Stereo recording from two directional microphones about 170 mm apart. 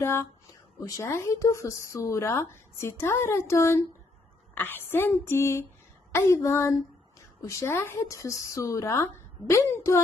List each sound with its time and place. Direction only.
0.0 s a woman's voice: 15° left (ahead or behind)